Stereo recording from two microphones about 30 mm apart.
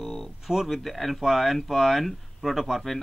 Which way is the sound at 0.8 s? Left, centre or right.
Centre.